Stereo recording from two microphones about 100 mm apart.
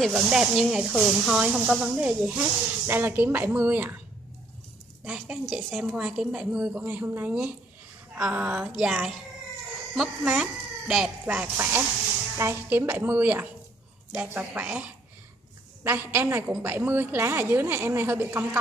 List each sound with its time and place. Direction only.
0.0 s a woman's voice: 5° right (ahead or behind)
5.0 s a woman's voice: 5° right (ahead or behind)
11.5 s a woman's voice: 25° right (ahead or behind)